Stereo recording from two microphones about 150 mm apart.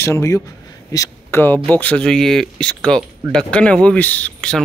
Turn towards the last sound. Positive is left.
turn(degrees=5)  # may be behind; listen again after turning